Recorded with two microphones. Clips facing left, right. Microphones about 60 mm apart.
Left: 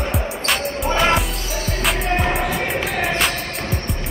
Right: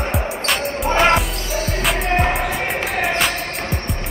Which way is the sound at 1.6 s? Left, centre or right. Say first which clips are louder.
Right 1 dB; centre.